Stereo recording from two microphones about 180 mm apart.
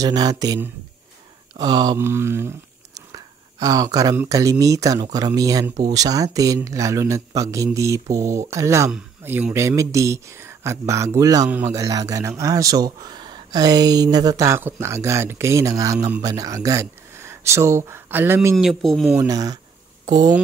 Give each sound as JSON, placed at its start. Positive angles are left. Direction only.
{"t": 0.0, "sound": "speech", "side_deg": -20}
{"t": 18.6, "sound": "speech", "side_deg": 0}
{"t": 19.1, "sound": "speech", "side_deg": -20}